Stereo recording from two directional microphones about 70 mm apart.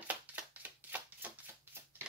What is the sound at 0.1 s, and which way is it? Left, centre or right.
Shuffling cards, right.